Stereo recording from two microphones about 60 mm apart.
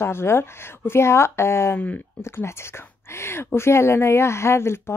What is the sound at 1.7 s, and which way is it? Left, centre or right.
Speech, left.